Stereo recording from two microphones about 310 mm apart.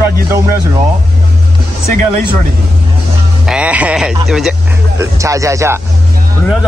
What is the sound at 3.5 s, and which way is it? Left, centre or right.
A man's voice, centre.